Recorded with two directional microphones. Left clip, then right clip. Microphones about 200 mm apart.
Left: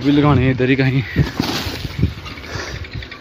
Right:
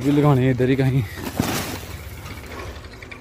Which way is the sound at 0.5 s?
Centre (ahead or behind).